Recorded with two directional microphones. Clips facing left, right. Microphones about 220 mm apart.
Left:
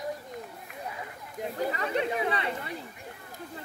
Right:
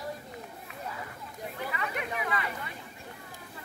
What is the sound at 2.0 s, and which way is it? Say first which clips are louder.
Chatter: left 5 dB; 30° left (ahead or behind).